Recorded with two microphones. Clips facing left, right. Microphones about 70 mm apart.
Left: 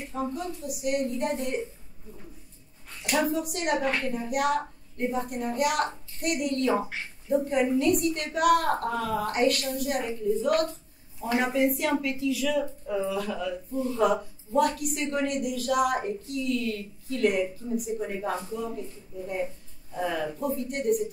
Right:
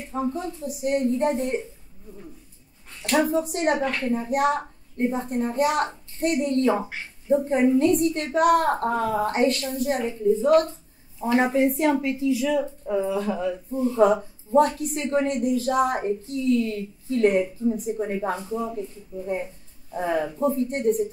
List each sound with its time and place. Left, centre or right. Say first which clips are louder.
0.3 s a woman's voice: right 3 dB; right
3.3 s a woman's voice: right 5 dB; right